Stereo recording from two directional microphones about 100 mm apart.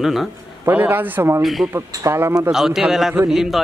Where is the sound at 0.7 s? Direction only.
20° right (ahead or behind).